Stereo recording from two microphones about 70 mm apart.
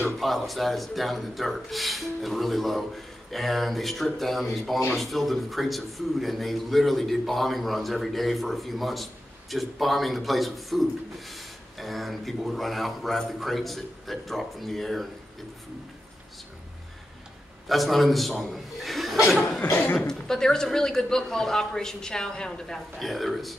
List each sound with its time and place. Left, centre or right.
0.2 s a man's voice: centre
17.6 s a man's voice: centre
19.6 s chuckle: left
20.1 s a man's voice: centre